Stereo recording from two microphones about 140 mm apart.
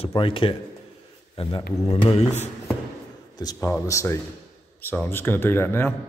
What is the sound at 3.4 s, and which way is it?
Speech, 30° left (ahead or behind).